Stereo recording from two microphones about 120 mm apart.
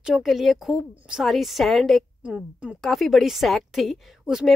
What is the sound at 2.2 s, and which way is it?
Speech, 10° right (ahead or behind).